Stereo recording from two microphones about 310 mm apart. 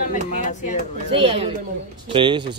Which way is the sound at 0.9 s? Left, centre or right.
Centre.